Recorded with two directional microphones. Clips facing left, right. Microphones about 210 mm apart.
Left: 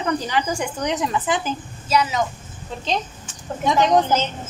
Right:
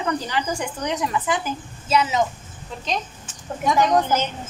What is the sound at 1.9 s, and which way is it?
Speech, 25° right (ahead or behind).